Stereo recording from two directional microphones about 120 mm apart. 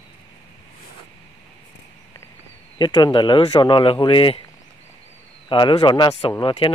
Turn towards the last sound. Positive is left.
turn(degrees=45)  # may be behind; listen again after turning